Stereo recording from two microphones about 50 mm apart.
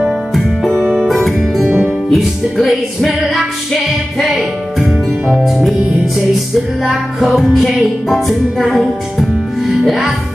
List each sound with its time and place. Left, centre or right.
0.3 s music: centre
1.7 s music: right
2.1 s music: centre
6.8 s music: centre